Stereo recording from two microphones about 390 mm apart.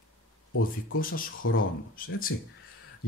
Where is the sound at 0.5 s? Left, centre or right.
Left.